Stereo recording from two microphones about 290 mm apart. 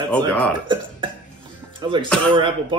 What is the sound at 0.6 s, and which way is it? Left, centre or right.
Speech, centre.